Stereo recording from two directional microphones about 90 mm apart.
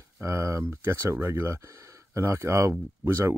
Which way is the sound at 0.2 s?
35° right (ahead or behind).